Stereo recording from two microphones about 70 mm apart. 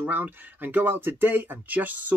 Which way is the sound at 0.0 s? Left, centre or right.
Right.